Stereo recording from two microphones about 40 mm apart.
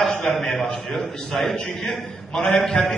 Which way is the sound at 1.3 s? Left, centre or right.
Centre.